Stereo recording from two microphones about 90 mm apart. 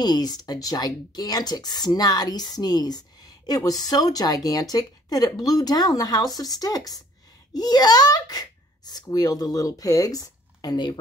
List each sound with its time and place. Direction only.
0.0 s a child's voice: 50° left (ahead or behind)